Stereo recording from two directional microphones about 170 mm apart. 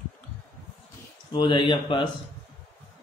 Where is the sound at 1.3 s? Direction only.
25° left (ahead or behind).